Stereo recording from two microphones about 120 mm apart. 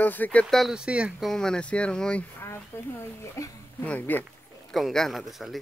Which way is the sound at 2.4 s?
20° left (ahead or behind).